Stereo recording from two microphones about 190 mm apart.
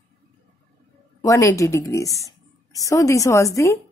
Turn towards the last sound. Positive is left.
turn(degrees=15)  # may be behind; listen again after turning